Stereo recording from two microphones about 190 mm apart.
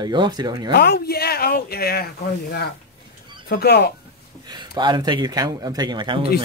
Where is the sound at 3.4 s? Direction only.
55° left (ahead or behind).